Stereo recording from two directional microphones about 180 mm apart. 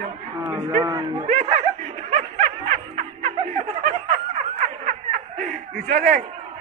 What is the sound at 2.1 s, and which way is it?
Snicker, 40° right (ahead or behind).